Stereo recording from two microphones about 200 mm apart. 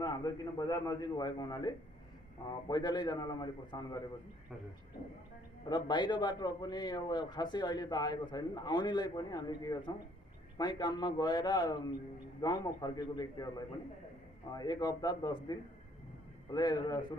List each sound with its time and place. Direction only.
0.0 s a man's voice: 20° left (ahead or behind)
5.7 s a man's voice: 20° left (ahead or behind)